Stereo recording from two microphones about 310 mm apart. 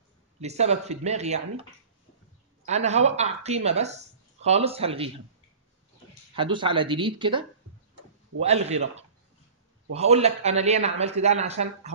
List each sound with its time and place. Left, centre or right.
0.4 s speech: right
2.6 s speech: right
6.3 s speech: centre
9.9 s speech: right